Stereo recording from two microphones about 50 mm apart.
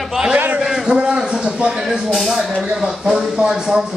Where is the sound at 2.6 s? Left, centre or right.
Centre.